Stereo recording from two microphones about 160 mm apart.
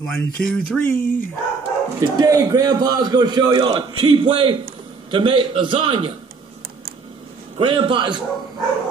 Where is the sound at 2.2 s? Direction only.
20° right (ahead or behind).